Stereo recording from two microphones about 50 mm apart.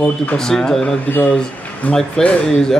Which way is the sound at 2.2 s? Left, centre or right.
Left.